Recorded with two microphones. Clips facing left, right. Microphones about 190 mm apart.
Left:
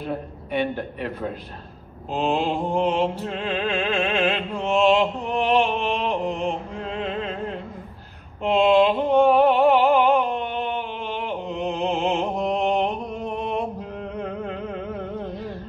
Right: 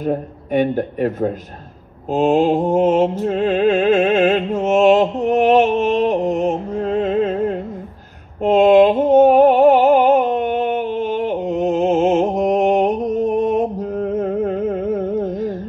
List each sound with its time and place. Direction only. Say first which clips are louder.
0.0 s a man's voice: right 8 dB; 45° right (ahead or behind)
2.0 s mantra: right 9 dB; 45° right (ahead or behind)
8.4 s music: right 7 dB; 45° right (ahead or behind)